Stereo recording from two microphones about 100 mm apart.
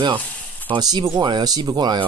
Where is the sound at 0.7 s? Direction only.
40° right (ahead or behind).